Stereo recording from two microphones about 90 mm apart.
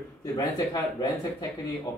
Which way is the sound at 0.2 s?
40° left (ahead or behind).